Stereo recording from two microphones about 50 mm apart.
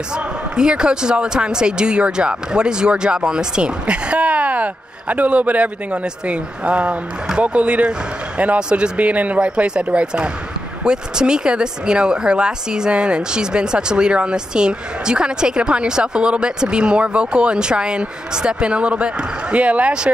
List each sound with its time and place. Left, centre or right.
0.1 s speech: centre